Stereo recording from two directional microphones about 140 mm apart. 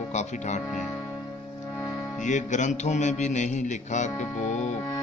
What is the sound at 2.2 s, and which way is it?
Mantra, 60° left (ahead or behind).